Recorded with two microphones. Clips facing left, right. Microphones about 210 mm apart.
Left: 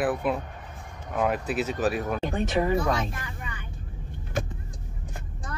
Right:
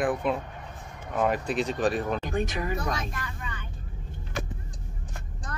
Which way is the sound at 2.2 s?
30° left (ahead or behind).